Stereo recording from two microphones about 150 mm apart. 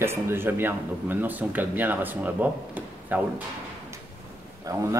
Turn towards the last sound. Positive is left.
turn(degrees=-20)  # may be behind; listen again after turning